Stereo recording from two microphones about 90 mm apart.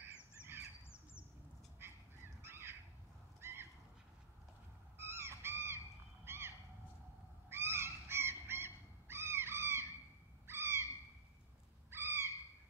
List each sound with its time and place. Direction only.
1.8 s crow: 25° right (ahead or behind)
3.3 s bird: 25° right (ahead or behind)
4.9 s crow: 25° right (ahead or behind)
6.2 s a sound: 25° right (ahead or behind)
7.4 s goose: 25° right (ahead or behind)
10.4 s owl: 25° right (ahead or behind)
11.9 s owl: 25° right (ahead or behind)